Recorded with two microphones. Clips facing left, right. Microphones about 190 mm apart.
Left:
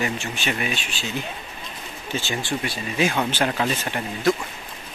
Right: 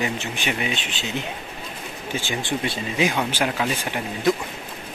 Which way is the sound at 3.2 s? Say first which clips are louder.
Left 1 dB; 10° right (ahead or behind).